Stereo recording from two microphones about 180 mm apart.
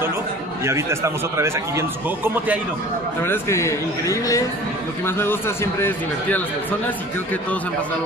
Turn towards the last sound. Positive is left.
turn(degrees=10)  # may be behind; listen again after turning